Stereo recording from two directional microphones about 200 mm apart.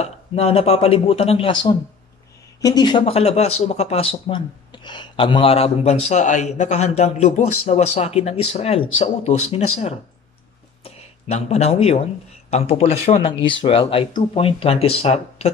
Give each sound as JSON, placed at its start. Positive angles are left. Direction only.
{"t": 0.0, "sound": "a man's voice", "side_deg": 30}
{"t": 10.8, "sound": "speech", "side_deg": 30}